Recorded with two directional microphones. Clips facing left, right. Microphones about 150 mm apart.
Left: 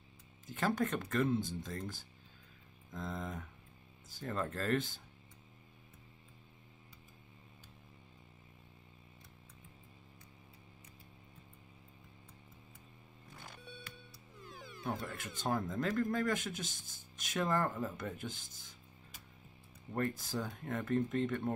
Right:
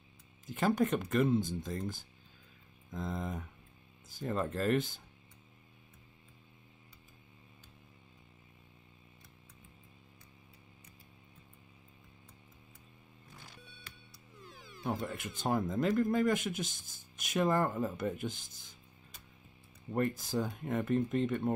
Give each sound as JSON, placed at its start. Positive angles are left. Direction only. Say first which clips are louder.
{"t": 0.6, "sound": "speech", "louder": "right 4 dB", "side_deg": -15}
{"t": 15.1, "sound": "speech", "louder": "right 3 dB", "side_deg": -20}
{"t": 19.9, "sound": "speech", "louder": "right 4 dB", "side_deg": -20}